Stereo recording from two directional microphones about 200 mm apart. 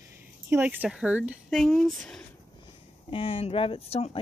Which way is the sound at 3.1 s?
25° left (ahead or behind).